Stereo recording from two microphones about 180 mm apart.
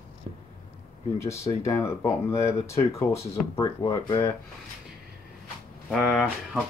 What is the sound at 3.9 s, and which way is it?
Speech, 20° left (ahead or behind).